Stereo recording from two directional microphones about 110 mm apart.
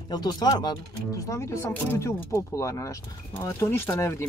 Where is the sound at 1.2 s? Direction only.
25° left (ahead or behind).